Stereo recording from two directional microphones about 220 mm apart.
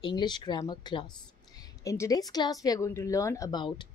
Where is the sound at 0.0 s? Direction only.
20° left (ahead or behind).